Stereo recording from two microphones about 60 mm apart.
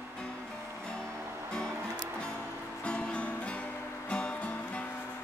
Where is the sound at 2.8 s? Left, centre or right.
Centre.